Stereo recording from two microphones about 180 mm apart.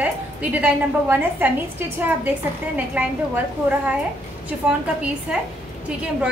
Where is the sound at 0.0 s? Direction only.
10° right (ahead or behind).